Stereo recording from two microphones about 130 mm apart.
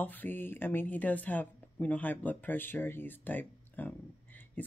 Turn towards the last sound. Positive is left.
turn(degrees=15)  # may be behind; listen again after turning